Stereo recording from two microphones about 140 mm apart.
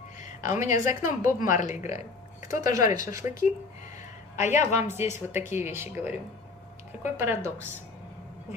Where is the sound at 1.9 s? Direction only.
60° left (ahead or behind).